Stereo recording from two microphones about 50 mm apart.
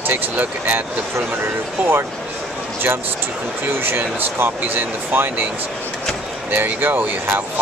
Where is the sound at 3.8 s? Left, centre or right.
Right.